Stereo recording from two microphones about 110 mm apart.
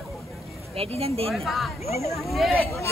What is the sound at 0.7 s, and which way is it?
Speech, 65° right (ahead or behind).